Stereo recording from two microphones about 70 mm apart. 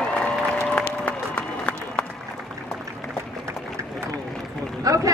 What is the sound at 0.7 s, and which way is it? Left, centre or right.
Music, centre.